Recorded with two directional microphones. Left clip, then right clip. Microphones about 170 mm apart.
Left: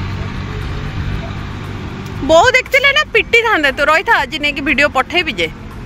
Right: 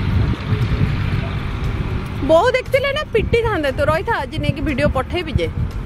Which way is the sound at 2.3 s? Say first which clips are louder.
Left 5 dB; centre (ahead or behind).